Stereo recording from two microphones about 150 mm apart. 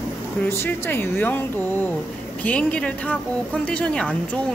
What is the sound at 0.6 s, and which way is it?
A woman's voice, 15° left (ahead or behind).